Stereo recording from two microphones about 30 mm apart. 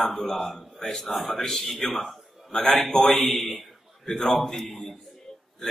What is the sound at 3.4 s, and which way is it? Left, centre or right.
A man's voice, centre.